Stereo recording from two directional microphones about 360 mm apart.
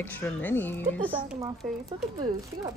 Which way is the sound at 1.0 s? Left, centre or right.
Centre.